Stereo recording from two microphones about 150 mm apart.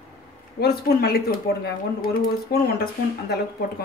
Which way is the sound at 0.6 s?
90° left.